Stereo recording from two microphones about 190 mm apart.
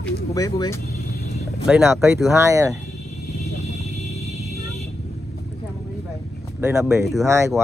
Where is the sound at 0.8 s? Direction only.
60° left (ahead or behind).